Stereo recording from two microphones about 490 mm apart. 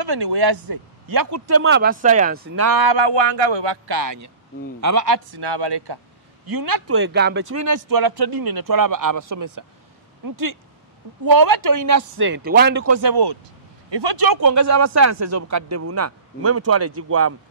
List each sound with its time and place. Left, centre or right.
0.0 s a man's voice: right; by 2.5 s centre
2.5 s speech: right
6.4 s speech: right
6.9 s speech: right
7.4 s a man's voice: right
12.4 s speech: centre
12.8 s speech: right
14.2 s a man's voice: right